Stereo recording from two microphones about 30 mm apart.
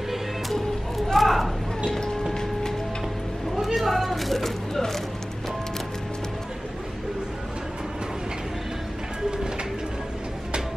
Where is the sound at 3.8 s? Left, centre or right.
Centre.